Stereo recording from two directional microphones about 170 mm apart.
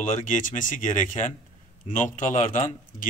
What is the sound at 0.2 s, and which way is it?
Speech, 50° left (ahead or behind).